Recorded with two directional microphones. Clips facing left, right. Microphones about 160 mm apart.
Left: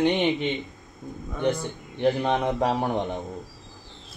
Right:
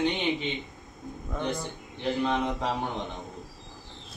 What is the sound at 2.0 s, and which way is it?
Speech, 55° left (ahead or behind).